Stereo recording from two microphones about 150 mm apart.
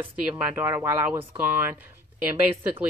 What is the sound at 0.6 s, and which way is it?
Speech, 10° right (ahead or behind).